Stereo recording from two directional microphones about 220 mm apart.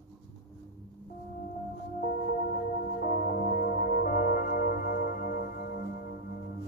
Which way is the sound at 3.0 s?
40° left (ahead or behind).